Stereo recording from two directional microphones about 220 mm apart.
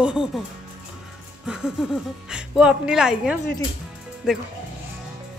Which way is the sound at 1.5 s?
5° right (ahead or behind).